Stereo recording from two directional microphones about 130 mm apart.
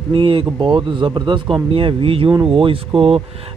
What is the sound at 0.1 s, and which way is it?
Speech, 40° right (ahead or behind).